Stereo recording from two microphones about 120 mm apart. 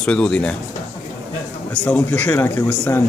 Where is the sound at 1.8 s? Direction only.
15° left (ahead or behind).